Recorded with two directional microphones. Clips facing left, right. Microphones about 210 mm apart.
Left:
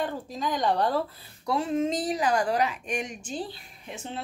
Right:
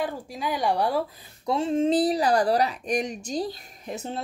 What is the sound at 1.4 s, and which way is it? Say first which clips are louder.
A woman's voice: right 3 dB; 25° right (ahead or behind).